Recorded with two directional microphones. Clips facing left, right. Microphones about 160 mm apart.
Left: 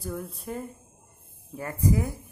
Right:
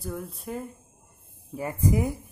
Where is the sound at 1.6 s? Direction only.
15° right (ahead or behind).